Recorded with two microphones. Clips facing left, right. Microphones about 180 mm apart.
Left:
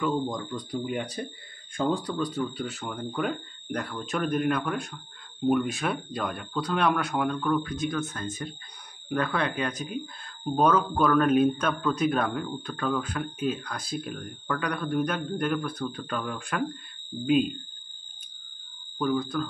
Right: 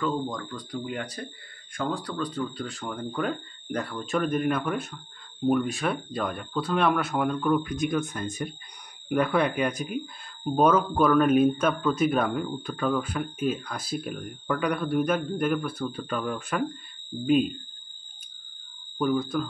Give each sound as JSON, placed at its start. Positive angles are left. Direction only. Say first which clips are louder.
{"t": 0.0, "sound": "speech", "louder": "left 1 dB", "side_deg": 20}
{"t": 2.1, "sound": "speech", "louder": "left 1 dB", "side_deg": 10}
{"t": 18.9, "sound": "speech", "louder": "right 2 dB", "side_deg": -10}